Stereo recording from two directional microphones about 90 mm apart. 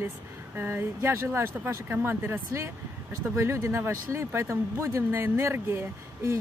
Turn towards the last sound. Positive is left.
turn(degrees=-30)  # may be behind; listen again after turning